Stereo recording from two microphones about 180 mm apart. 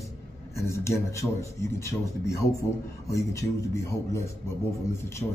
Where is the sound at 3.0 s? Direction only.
15° left (ahead or behind).